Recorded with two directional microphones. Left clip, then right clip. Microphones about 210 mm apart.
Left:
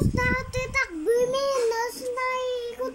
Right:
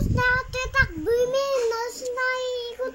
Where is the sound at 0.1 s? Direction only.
10° left (ahead or behind).